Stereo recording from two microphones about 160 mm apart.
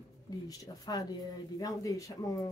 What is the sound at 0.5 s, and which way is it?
Speech, 25° left (ahead or behind).